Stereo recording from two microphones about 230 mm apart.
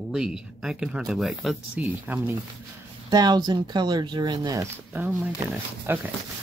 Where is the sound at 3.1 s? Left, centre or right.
Centre.